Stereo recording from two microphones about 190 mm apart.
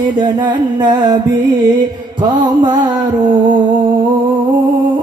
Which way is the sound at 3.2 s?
25° right (ahead or behind).